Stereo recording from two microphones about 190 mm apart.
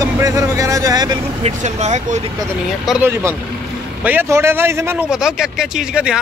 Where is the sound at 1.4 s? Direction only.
35° right (ahead or behind).